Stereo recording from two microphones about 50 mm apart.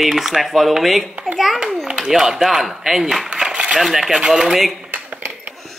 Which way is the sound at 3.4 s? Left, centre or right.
Centre.